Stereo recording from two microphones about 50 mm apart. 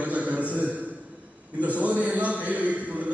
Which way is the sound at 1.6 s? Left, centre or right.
Right.